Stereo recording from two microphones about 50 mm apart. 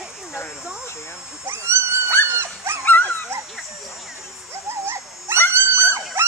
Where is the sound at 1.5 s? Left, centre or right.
Right.